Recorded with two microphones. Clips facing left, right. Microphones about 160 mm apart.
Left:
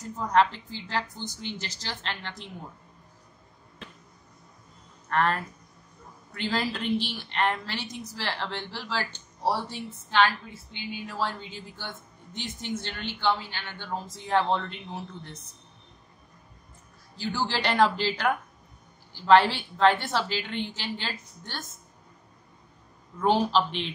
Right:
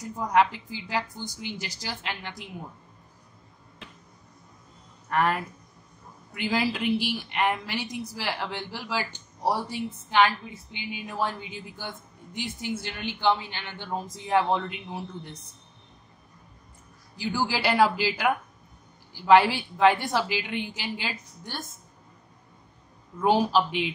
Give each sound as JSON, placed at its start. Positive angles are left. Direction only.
{"t": 0.0, "sound": "a woman's voice", "side_deg": -10}
{"t": 5.1, "sound": "a woman's voice", "side_deg": -10}
{"t": 17.2, "sound": "a woman's voice", "side_deg": -10}
{"t": 23.1, "sound": "a woman's voice", "side_deg": -10}